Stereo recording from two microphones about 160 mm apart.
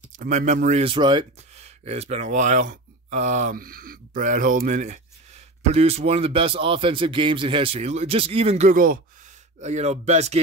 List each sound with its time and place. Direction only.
0.2 s speech: 55° right (ahead or behind); by 1.2 s 30° right (ahead or behind)
1.6 s speech: 40° right (ahead or behind)
8.7 s speech: 60° right (ahead or behind)
9.6 s speech: 45° right (ahead or behind)